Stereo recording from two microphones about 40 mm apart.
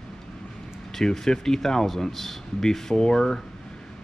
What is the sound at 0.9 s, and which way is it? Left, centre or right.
Speech, centre.